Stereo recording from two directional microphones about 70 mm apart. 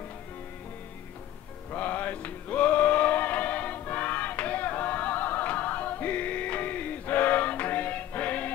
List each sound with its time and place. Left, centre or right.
1.7 s music: left